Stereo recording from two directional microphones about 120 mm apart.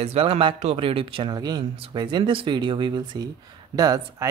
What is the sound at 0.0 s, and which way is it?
Speech, 55° right (ahead or behind).